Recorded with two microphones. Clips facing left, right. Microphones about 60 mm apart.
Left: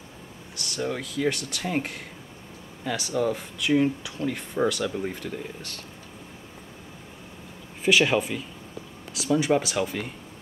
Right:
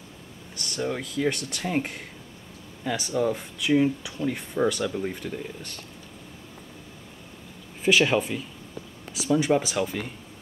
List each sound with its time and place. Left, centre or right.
0.7 s speech: centre
7.8 s speech: centre